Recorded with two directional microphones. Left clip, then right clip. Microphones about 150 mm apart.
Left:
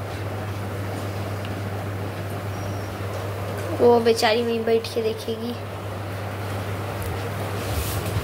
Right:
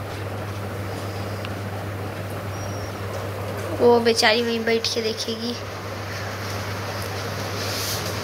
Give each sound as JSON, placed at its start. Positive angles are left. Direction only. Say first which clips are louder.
{"t": 3.8, "sound": "a woman's voice", "louder": "even", "side_deg": 15}